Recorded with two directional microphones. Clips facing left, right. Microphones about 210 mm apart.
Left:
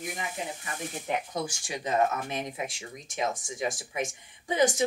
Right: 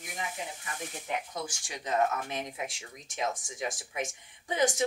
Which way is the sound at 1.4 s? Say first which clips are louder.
Left 5 dB; 5° left (ahead or behind).